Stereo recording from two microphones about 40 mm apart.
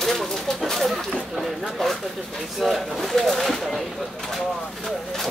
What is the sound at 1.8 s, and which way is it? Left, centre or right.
Speech, centre.